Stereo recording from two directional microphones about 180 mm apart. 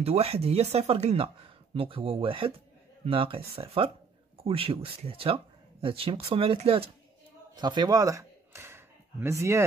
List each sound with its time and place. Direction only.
0.0 s speech: 35° right (ahead or behind); by 9.7 s 15° right (ahead or behind)